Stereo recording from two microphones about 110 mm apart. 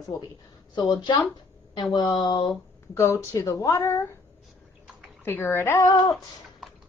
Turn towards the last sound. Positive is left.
turn(degrees=40)  # may be behind; listen again after turning